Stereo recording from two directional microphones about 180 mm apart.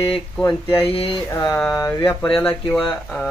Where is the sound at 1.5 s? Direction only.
15° left (ahead or behind).